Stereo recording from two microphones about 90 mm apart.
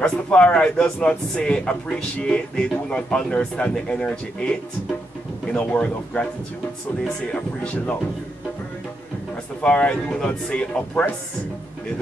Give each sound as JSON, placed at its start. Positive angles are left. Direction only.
{"t": 0.0, "sound": "speech", "side_deg": 10}
{"t": 7.3, "sound": "speech", "side_deg": 15}
{"t": 9.6, "sound": "speech", "side_deg": 15}